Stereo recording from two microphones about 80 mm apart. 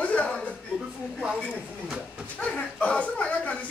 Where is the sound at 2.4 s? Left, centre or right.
Centre.